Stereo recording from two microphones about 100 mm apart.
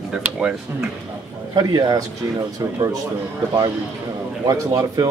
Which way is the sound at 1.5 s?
45° right (ahead or behind).